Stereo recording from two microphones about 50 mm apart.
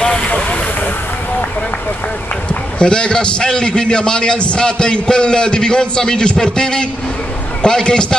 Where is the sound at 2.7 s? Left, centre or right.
Centre.